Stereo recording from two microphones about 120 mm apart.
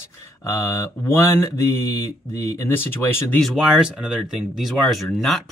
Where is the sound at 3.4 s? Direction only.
5° right (ahead or behind).